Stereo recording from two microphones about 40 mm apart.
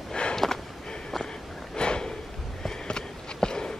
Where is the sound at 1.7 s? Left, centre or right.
Left.